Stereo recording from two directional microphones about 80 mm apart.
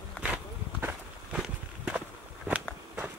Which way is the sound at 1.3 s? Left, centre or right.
Centre.